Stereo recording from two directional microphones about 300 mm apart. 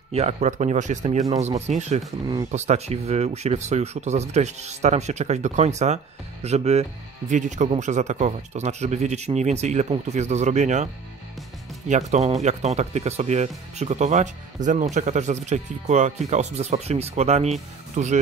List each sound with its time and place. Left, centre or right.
0.1 s speech: right
1.2 s speech: centre
1.7 s speech: right
11.9 s speech: right